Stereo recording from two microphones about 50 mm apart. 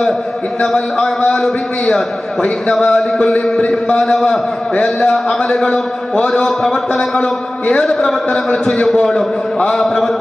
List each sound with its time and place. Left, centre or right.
1.3 s a man's voice: centre
8.8 s a man's voice: centre